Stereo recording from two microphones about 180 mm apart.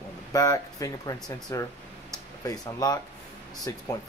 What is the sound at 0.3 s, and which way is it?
Speech, 20° left (ahead or behind).